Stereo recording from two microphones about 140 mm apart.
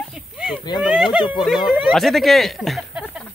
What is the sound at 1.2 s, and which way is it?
Speech, 35° left (ahead or behind).